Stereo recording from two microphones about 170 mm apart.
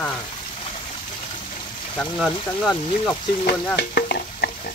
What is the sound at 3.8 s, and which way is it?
Stir, 70° left (ahead or behind).